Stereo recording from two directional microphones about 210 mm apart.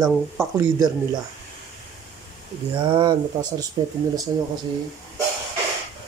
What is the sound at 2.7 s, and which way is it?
Speech, 20° right (ahead or behind).